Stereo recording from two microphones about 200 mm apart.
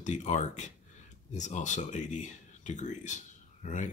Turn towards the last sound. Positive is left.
turn(degrees=35)  # may be behind; listen again after turning